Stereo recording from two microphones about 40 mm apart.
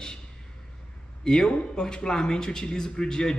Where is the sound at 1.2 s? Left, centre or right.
Centre.